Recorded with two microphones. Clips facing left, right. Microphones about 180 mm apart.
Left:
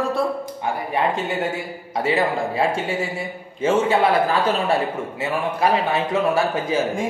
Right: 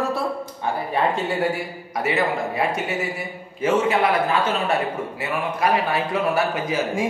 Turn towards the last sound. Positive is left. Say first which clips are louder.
# left 2 dB
turn(degrees=30)  # may be behind; listen again after turning